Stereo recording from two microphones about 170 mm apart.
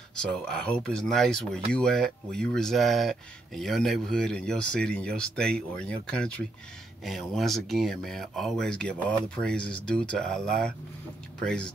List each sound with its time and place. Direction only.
0.2 s speech: 5° left (ahead or behind)